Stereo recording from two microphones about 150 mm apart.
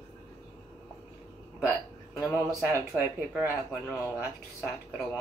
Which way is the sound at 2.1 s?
20° left (ahead or behind).